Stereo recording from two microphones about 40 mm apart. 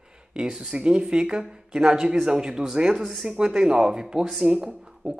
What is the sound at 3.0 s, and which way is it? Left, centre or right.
Speech, centre.